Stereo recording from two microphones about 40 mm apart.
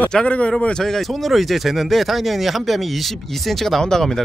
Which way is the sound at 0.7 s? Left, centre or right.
Centre.